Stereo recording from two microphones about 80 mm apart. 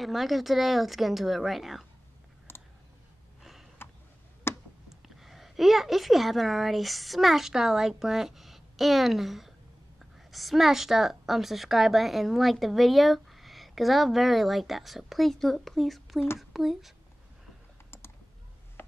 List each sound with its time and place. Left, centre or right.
0.0 s a woman's voice: centre
2.5 s clicking: left
3.8 s a sound: left
4.8 s a woman's voice: centre
18.8 s chopping: left